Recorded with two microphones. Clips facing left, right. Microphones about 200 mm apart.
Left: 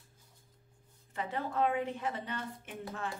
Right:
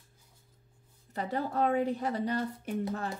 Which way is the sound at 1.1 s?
40° right (ahead or behind).